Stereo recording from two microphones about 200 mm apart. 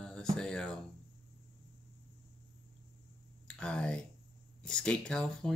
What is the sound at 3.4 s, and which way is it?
Speech, 5° left (ahead or behind).